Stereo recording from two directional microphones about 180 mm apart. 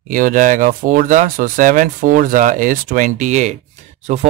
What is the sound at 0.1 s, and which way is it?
Speech, 50° right (ahead or behind).